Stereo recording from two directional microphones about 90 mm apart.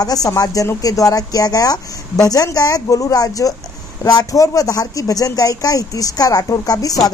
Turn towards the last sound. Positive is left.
turn(degrees=45)  # may be behind; listen again after turning